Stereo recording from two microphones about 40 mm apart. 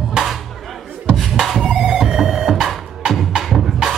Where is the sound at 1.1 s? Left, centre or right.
Centre.